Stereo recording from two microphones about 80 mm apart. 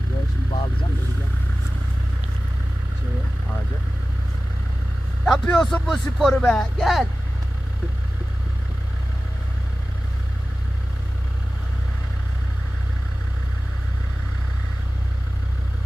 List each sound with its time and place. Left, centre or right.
0.5 s vehicle: left
5.2 s speech: centre